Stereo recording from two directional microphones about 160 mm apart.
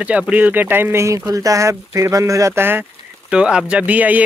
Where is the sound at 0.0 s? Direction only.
10° right (ahead or behind).